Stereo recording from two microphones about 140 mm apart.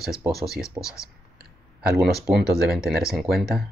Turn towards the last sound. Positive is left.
turn(degrees=0)  # may be behind; listen again after turning